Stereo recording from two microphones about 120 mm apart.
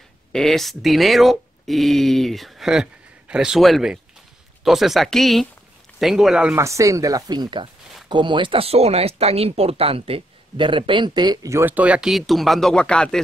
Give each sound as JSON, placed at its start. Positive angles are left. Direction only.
{"t": 0.3, "sound": "speech", "side_deg": 5}
{"t": 6.5, "sound": "speech", "side_deg": -25}
{"t": 11.5, "sound": "speech", "side_deg": -15}